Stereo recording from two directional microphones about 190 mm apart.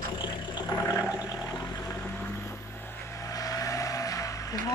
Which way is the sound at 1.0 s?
5° right (ahead or behind).